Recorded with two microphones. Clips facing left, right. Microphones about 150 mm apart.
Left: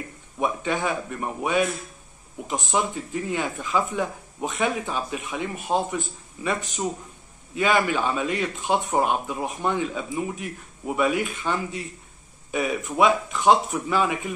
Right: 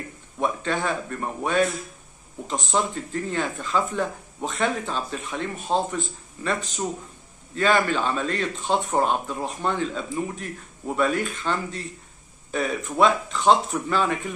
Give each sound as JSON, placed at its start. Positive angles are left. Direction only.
{"t": 0.4, "sound": "speech", "side_deg": 10}
{"t": 7.5, "sound": "speech", "side_deg": 10}